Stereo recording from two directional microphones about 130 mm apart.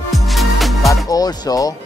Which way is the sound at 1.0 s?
30° left (ahead or behind).